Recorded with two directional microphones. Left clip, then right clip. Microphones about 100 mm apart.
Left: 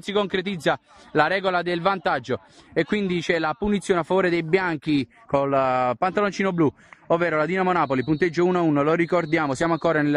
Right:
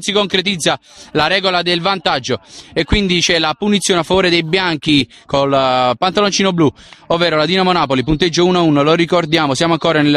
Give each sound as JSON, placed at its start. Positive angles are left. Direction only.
{"t": 0.0, "sound": "a man's voice", "side_deg": -10}
{"t": 5.3, "sound": "speech", "side_deg": -35}